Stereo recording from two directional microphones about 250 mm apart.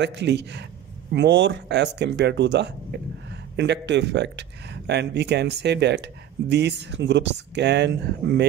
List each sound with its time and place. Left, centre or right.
0.0 s speech: right